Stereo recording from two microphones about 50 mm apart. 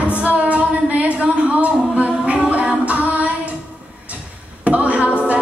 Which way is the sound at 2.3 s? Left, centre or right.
Right.